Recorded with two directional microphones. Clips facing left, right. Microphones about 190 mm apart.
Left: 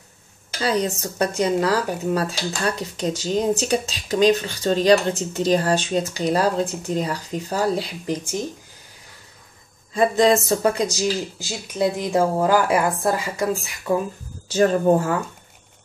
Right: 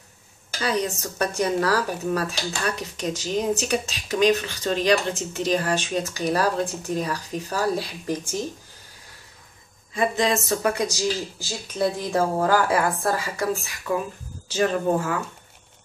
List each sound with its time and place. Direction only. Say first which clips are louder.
0.6 s speech: left 3 dB; 30° left (ahead or behind)
9.9 s speech: left 6 dB; 35° left (ahead or behind)
11.0 s speech: left 3 dB; 20° left (ahead or behind)
14.6 s speech: left 5 dB; 40° left (ahead or behind)